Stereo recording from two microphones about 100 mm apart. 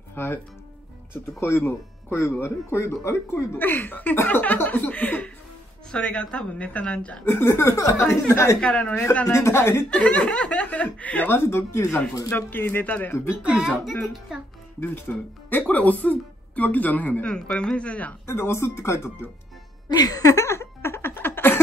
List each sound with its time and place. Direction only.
0.1 s speech: 20° left (ahead or behind)
1.4 s speech: 25° left (ahead or behind)
7.2 s speech: 25° left (ahead or behind)
8.5 s speech: 10° left (ahead or behind)
9.2 s speech: 30° left (ahead or behind)
9.8 s speech: 10° left (ahead or behind)
13.4 s a child's voice: 10° right (ahead or behind)
14.8 s speech: 15° left (ahead or behind)
18.2 s speech: 25° left (ahead or behind)
19.9 s a sound: 40° left (ahead or behind); by 21.5 s 20° left (ahead or behind)